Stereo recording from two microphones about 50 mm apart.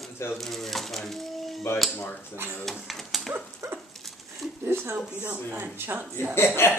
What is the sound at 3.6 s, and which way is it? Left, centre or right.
Dog, right.